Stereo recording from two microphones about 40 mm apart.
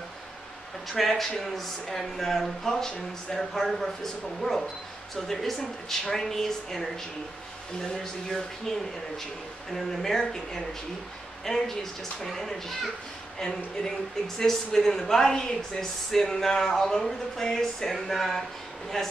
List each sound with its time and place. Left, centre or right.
0.9 s a woman's voice: centre
2.9 s speech: left
3.5 s a woman's voice: centre